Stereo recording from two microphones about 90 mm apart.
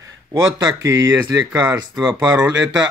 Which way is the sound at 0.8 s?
25° right (ahead or behind).